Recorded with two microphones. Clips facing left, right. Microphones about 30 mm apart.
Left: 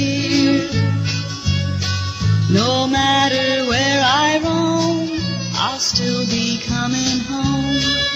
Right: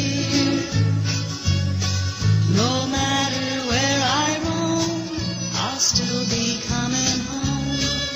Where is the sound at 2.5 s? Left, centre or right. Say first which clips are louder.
Left 6 dB; left.